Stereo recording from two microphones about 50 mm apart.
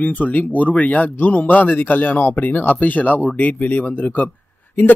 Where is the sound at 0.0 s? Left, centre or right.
Left.